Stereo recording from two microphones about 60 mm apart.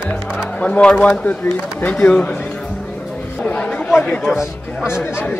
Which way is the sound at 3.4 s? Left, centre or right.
Left.